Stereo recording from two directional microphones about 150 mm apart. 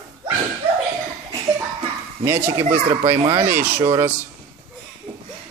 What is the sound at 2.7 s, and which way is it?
Speech, 60° right (ahead or behind).